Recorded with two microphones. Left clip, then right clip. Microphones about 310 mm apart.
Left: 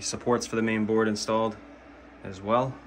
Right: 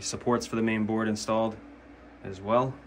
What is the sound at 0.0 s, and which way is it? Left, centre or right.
Speech, centre.